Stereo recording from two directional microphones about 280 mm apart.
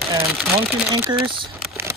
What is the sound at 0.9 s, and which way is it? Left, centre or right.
Speech, centre.